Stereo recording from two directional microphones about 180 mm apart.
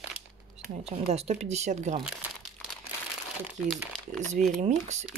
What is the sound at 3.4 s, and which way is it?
Speech, centre (ahead or behind).